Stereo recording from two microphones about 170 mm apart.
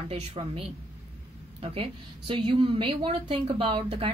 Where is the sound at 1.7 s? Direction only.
30° right (ahead or behind).